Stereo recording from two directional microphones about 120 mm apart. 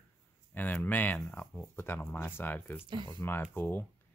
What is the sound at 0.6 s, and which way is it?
Speech, 15° left (ahead or behind).